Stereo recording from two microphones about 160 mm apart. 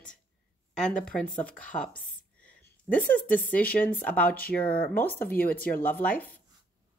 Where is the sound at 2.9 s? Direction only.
60° left (ahead or behind).